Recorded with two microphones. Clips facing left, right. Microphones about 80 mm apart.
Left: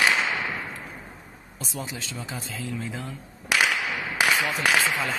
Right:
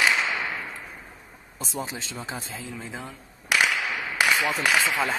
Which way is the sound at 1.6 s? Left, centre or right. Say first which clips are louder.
Right 2 dB; right.